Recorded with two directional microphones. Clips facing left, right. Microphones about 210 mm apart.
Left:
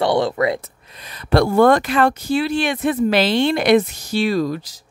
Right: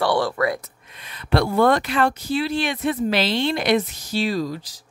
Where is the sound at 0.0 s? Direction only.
20° left (ahead or behind).